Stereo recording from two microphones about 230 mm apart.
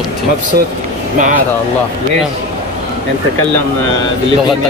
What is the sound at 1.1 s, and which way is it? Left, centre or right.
Speech, right.